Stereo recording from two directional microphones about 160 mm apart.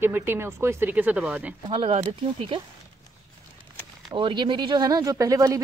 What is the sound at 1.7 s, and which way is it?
Speech, 35° right (ahead or behind).